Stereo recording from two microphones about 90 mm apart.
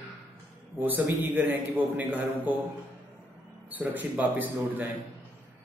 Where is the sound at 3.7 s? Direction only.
20° right (ahead or behind).